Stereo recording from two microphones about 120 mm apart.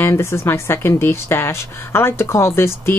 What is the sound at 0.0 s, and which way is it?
Speech, 20° left (ahead or behind).